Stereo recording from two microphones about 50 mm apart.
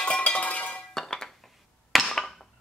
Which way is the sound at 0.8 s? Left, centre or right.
Centre.